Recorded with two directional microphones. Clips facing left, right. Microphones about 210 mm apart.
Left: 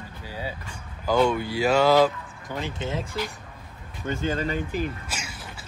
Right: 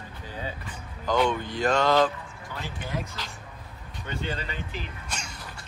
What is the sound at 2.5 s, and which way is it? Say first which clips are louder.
Speech: left 5 dB; 20° left (ahead or behind).